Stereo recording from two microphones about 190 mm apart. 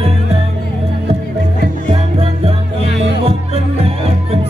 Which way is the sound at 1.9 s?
30° right (ahead or behind).